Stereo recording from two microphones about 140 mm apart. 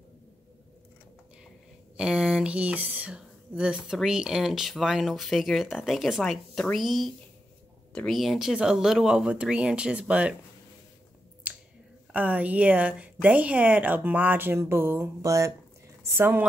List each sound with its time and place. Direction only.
2.0 s speech: 5° right (ahead or behind)
11.5 s finger snapping: 10° right (ahead or behind)
12.1 s a woman's voice: 10° right (ahead or behind)